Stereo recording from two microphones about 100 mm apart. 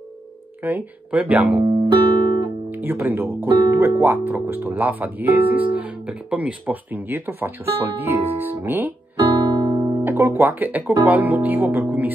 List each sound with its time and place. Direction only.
0.6 s speech: 20° right (ahead or behind)
1.6 s speech: 65° right (ahead or behind)
1.9 s guitar: 45° right (ahead or behind)
2.7 s speech: 20° right (ahead or behind)
9.6 s music: 45° right (ahead or behind)
10.0 s speech: 25° right (ahead or behind)